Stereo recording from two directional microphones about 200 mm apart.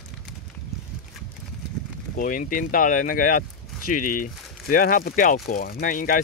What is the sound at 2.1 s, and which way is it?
Speech, 45° left (ahead or behind).